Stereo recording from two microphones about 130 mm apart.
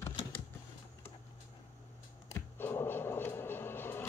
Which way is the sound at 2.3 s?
15° left (ahead or behind).